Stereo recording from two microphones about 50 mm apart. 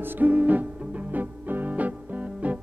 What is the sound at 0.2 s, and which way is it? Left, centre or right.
Music, right.